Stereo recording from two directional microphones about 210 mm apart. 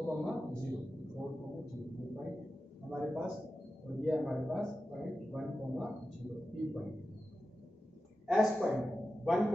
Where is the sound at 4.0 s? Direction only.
Centre (ahead or behind).